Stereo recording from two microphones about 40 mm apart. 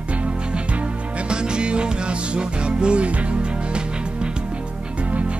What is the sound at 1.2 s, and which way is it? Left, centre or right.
Music, right.